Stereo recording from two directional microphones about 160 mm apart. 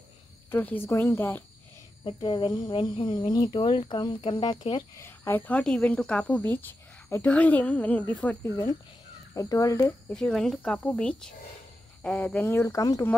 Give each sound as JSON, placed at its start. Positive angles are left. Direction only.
{"t": 0.5, "sound": "speech", "side_deg": 10}
{"t": 2.0, "sound": "speech", "side_deg": 30}
{"t": 4.9, "sound": "speech", "side_deg": 15}
{"t": 10.1, "sound": "speech", "side_deg": 5}